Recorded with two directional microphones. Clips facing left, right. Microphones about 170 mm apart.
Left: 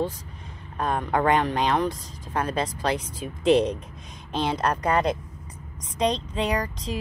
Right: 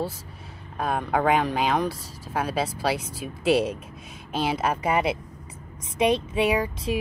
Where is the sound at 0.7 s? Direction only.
10° right (ahead or behind).